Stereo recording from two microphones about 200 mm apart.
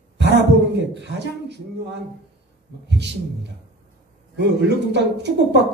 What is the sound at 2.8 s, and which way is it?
Speech, 60° right (ahead or behind).